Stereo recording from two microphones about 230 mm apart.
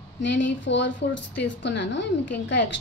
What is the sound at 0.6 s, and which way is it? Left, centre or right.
A woman's voice, left.